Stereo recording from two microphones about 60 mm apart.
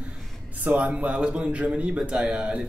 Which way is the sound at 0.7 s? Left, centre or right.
Right.